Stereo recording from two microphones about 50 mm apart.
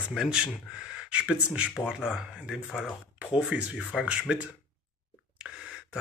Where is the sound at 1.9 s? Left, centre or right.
Centre.